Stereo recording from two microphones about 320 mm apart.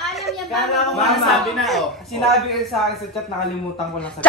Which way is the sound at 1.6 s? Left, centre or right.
Centre.